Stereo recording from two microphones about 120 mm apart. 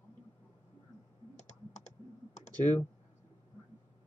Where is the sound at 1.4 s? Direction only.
70° left (ahead or behind).